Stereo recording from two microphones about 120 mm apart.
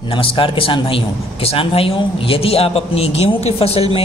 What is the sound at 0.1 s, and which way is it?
A man's voice, 45° left (ahead or behind).